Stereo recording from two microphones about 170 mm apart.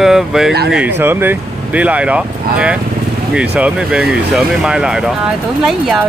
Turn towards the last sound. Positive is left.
turn(degrees=0)  # may be behind; listen again after turning